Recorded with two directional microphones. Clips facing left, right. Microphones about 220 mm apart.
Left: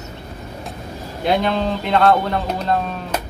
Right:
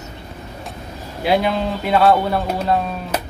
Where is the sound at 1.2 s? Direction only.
5° right (ahead or behind).